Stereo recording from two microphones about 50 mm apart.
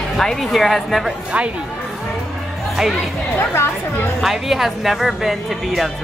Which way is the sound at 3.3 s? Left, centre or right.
Left.